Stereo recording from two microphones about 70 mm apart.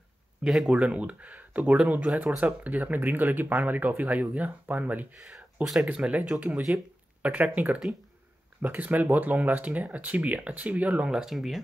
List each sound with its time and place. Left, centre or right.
0.4 s speech: centre
0.7 s speech: centre
11.1 s speech: centre